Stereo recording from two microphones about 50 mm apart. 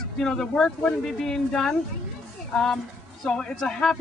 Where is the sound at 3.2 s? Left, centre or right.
Centre.